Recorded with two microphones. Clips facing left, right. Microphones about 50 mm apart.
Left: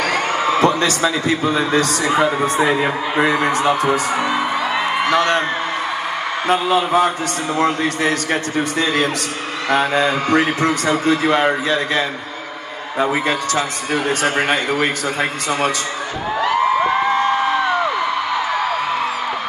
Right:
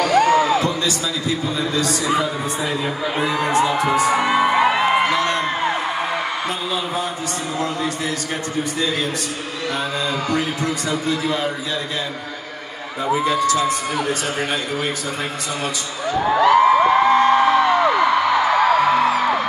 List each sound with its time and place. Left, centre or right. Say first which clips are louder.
0.0 s a man's voice: right 3 dB; left
4.2 s music: right 3 dB; right
5.1 s a sound: left 4 dB; left
6.5 s a man's voice: left 8 dB; left
13.0 s a man's voice: even; left